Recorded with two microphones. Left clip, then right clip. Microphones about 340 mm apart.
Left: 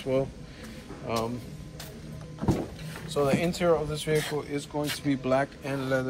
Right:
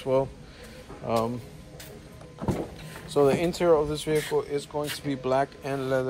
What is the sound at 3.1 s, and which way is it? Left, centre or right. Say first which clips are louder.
Speech: right 4 dB; centre.